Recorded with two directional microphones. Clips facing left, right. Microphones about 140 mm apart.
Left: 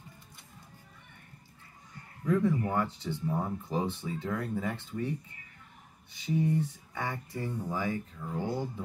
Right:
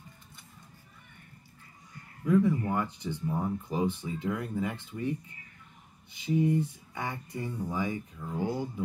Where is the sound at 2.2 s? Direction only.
15° right (ahead or behind).